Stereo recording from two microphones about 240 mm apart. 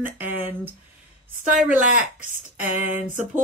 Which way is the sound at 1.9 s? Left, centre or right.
Left.